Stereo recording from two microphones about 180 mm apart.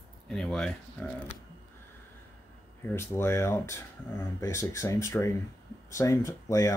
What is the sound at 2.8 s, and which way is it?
Speech, 15° left (ahead or behind).